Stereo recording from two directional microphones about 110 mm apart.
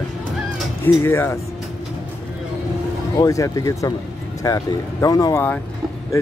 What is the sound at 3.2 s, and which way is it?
Speech, 30° left (ahead or behind).